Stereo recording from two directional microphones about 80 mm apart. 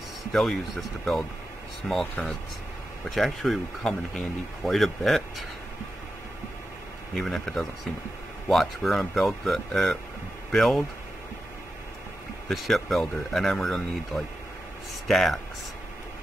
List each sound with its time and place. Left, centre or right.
0.3 s speech: centre
3.2 s speech: centre
7.2 s speech: centre
12.4 s speech: centre